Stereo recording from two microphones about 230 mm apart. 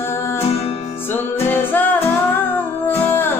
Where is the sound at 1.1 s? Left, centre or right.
Centre.